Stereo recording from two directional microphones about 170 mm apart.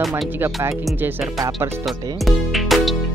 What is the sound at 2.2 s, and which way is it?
Music, centre (ahead or behind).